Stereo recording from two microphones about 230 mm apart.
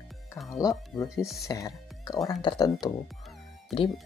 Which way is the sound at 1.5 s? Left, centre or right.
Centre.